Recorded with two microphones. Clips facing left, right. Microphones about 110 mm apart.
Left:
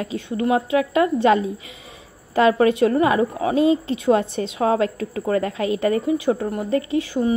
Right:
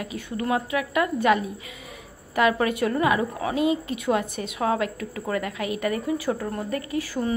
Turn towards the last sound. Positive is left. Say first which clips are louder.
# left 6 dB
turn(degrees=20)  # may be behind; listen again after turning